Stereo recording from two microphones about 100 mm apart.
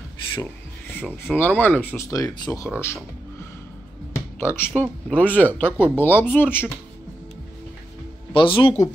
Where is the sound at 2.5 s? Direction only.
15° left (ahead or behind).